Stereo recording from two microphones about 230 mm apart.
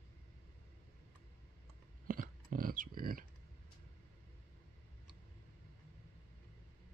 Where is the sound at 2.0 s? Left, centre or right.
Right.